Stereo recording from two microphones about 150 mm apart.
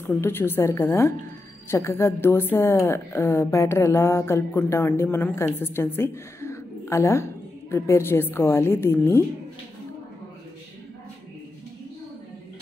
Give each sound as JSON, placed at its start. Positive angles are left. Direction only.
{"t": 0.0, "sound": "a woman's voice", "side_deg": 15}